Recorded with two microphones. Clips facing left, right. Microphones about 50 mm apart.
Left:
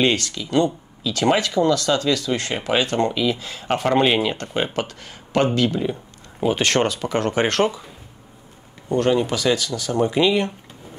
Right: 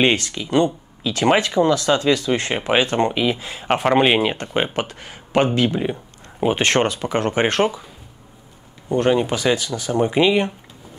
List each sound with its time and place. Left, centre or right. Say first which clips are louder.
0.0 s speech: right 2 dB; right
8.8 s speech: right 1 dB; right